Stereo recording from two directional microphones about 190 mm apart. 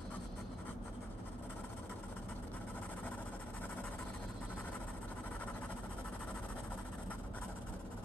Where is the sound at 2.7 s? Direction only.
10° left (ahead or behind).